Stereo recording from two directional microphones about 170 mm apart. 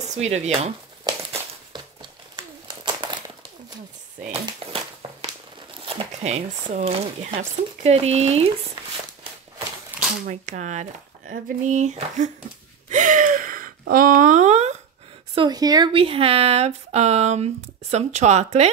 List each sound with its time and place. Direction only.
0.1 s speech: 40° right (ahead or behind)
1.3 s crumpling: 25° right (ahead or behind)
4.6 s a sound: 30° right (ahead or behind)
5.0 s crumpling: 35° right (ahead or behind)
5.9 s speech: 35° right (ahead or behind)
9.8 s a sound: 5° right (ahead or behind)
10.2 s speech: 45° right (ahead or behind)
12.9 s a sound: 50° right (ahead or behind)
15.3 s speech: 25° right (ahead or behind); by 18.7 s 40° right (ahead or behind)